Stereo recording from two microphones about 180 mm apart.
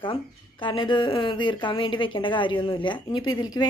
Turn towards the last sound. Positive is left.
turn(degrees=20)  # may be behind; listen again after turning